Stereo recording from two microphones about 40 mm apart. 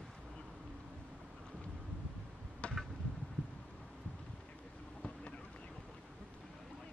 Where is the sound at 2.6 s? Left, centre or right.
Left.